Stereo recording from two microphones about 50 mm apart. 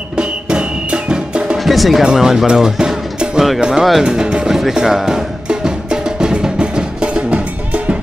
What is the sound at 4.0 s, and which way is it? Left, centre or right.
Speech, centre.